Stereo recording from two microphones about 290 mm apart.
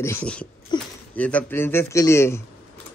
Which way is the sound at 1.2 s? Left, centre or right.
Centre.